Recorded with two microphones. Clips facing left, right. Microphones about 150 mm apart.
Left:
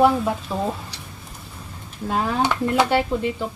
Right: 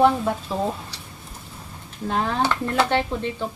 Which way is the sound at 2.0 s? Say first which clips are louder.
Left 1 dB; 5° left (ahead or behind).